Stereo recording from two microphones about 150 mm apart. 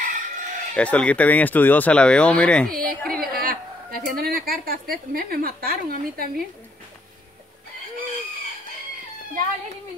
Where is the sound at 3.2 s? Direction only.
75° right (ahead or behind).